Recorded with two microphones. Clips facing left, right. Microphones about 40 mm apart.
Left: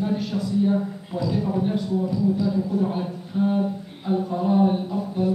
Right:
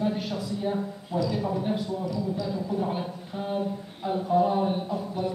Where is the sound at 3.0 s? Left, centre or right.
Centre.